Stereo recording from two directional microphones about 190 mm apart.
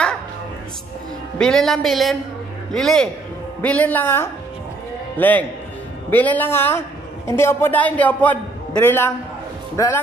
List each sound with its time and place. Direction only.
1.4 s a man's voice: 5° left (ahead or behind)